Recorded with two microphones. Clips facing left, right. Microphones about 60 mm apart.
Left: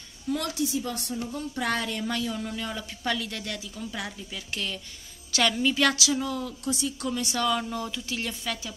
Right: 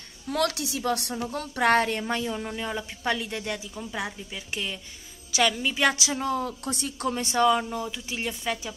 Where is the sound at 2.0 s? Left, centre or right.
Right.